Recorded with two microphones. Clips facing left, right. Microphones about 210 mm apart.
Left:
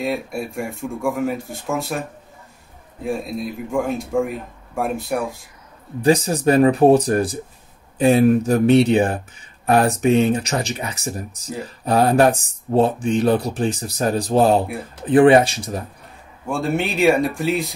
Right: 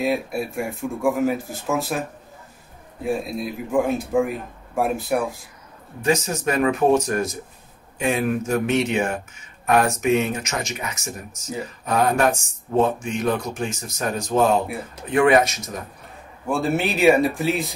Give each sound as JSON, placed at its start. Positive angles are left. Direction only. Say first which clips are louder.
{"t": 0.0, "sound": "a man's voice", "louder": "right 1 dB", "side_deg": 0}
{"t": 6.0, "sound": "speech", "louder": "left 6 dB", "side_deg": 35}
{"t": 16.4, "sound": "a man's voice", "louder": "even", "side_deg": 0}